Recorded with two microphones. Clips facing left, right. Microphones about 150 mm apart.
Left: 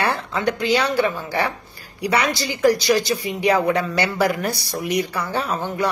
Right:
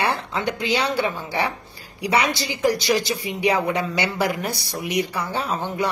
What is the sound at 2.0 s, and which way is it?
A woman's voice, 20° right (ahead or behind).